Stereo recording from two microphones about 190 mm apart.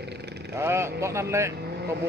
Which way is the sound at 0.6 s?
15° right (ahead or behind).